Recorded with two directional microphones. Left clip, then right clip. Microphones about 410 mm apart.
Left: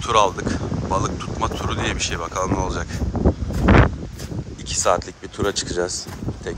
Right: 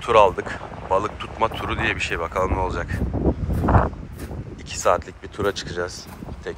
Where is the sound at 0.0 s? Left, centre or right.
Centre.